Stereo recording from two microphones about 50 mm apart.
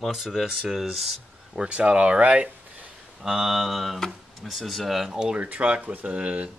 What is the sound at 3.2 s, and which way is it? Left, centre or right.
Speech, centre.